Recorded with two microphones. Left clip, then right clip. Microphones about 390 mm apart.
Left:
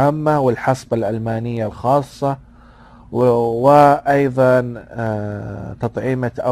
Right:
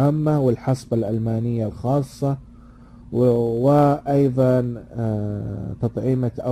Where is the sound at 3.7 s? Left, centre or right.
Left.